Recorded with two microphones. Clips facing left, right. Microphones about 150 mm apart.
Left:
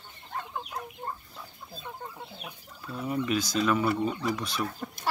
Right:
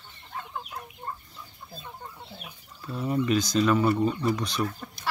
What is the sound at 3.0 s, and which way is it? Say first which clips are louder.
Speech: right 4 dB; 5° left (ahead or behind).